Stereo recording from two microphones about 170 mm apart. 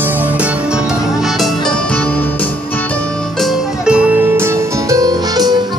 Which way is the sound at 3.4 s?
5° right (ahead or behind).